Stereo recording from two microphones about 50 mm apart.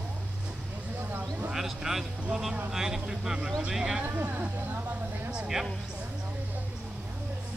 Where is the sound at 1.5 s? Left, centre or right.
Centre.